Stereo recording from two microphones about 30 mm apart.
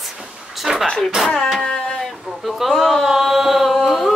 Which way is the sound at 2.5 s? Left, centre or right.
Centre.